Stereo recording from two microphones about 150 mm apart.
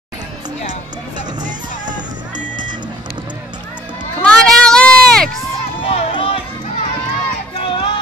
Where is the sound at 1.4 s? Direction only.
60° right (ahead or behind).